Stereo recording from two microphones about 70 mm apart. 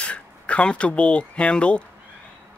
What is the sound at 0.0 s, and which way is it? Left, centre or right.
Speech, centre.